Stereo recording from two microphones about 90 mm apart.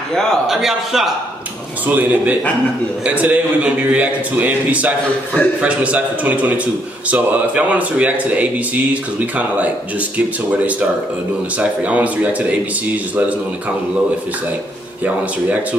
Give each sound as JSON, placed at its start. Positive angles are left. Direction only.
{"t": 0.1, "sound": "a man's voice", "side_deg": 5}
{"t": 1.9, "sound": "a man's voice", "side_deg": -20}
{"t": 15.0, "sound": "a man's voice", "side_deg": -15}